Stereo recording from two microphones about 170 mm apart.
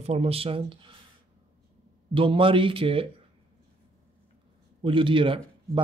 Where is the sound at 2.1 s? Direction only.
30° right (ahead or behind).